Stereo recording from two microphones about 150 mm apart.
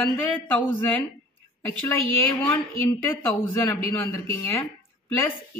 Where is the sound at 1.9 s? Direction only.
15° left (ahead or behind).